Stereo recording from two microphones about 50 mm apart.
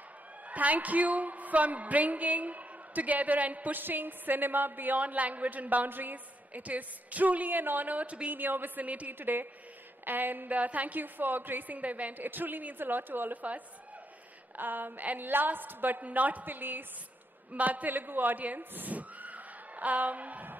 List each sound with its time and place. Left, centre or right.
0.5 s a woman's voice: right
8.4 s a woman's voice: right
14.6 s a woman's voice: right